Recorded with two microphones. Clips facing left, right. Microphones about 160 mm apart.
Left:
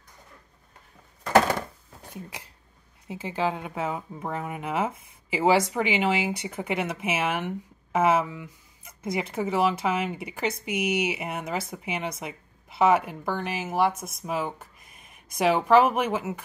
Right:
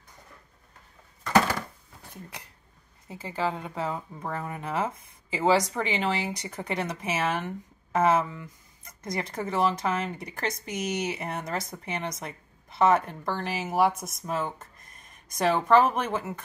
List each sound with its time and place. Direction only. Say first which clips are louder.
3.1 s speech: left 2 dB; 20° left (ahead or behind)